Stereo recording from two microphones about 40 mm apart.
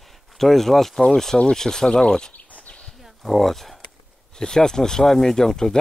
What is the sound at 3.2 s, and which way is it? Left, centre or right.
Speech, centre.